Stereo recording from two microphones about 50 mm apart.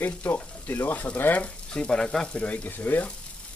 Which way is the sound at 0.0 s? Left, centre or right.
Left.